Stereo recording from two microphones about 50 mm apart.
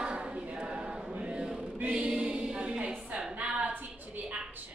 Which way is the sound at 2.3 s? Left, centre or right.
Right.